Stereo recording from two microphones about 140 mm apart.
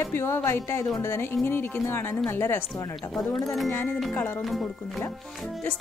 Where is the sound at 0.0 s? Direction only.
15° left (ahead or behind).